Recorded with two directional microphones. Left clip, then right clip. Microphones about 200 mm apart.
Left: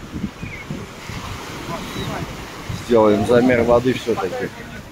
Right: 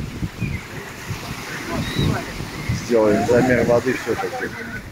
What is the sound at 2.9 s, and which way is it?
Speech, 15° left (ahead or behind).